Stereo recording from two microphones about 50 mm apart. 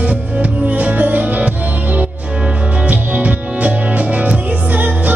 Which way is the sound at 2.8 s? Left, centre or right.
Right.